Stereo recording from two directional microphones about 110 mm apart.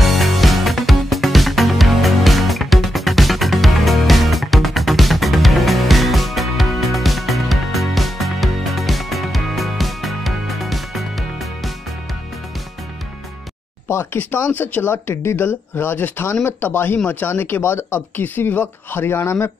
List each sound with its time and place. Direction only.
0.0 s music: centre (ahead or behind)
13.8 s speech: 20° left (ahead or behind)